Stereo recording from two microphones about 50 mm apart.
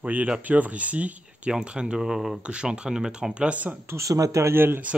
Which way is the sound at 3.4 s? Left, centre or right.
Right.